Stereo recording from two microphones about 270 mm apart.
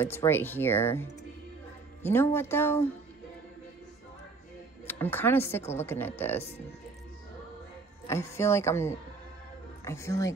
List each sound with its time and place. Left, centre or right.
0.0 s speech: centre
2.0 s speech: centre
4.8 s speech: centre
8.1 s speech: centre